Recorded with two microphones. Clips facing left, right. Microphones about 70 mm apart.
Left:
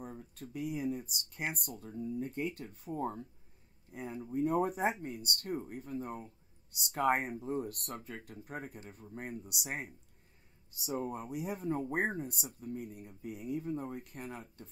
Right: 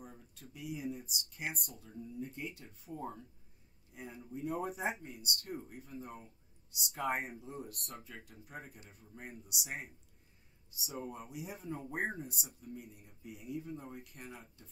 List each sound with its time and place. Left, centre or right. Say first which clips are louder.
0.0 s speech: left 7 dB; left